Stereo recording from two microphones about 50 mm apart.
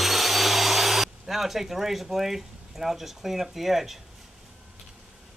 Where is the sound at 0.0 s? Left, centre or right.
Centre.